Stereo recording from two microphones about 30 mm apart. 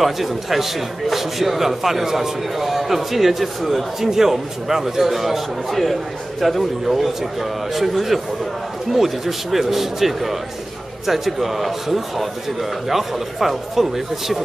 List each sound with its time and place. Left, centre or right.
0.0 s a man's voice: centre